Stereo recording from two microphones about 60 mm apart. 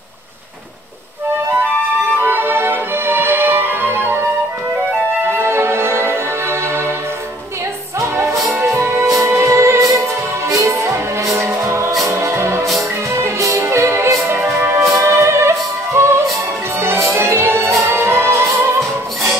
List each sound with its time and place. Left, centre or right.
2.2 s music: right
8.0 s music: right